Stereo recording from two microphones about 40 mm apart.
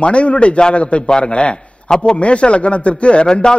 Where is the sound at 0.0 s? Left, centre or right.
Left.